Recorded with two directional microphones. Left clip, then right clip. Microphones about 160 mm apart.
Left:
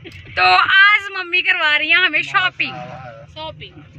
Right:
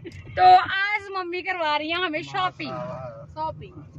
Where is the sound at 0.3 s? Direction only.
25° right (ahead or behind).